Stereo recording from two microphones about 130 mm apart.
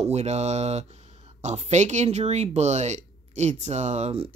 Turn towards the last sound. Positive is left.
turn(degrees=-60)  # may be behind; listen again after turning